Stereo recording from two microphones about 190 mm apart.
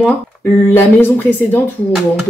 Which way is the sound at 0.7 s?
10° left (ahead or behind).